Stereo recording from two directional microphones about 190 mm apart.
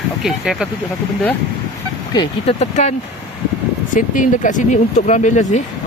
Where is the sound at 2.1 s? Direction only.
35° left (ahead or behind).